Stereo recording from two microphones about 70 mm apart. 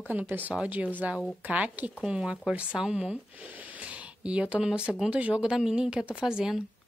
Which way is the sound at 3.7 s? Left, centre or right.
Centre.